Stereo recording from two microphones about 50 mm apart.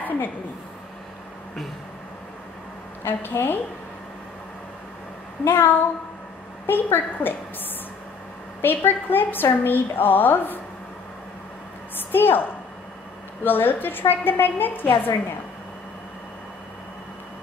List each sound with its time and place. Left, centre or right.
3.1 s a woman's voice: left
5.4 s a woman's voice: left
8.6 s a woman's voice: left
12.1 s a woman's voice: left